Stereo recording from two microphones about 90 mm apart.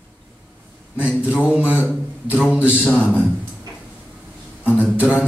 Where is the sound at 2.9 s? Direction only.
20° left (ahead or behind).